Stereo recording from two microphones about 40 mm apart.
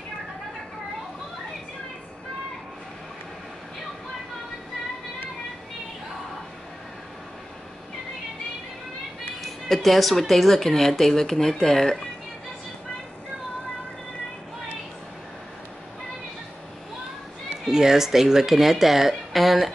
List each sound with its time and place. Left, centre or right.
9.4 s speech: centre
17.6 s speech: centre